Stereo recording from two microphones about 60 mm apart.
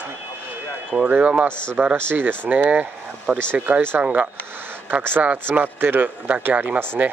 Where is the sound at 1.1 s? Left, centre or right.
Right.